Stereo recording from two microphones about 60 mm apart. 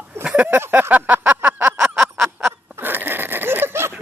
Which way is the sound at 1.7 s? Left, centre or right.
Centre.